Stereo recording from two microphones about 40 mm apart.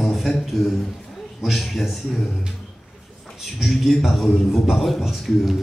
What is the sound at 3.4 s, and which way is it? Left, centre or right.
A man's voice, centre.